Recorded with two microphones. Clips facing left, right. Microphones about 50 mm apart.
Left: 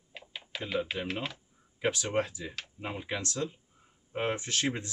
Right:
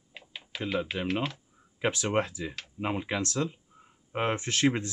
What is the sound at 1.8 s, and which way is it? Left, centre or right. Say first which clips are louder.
Speech: right 2 dB; right.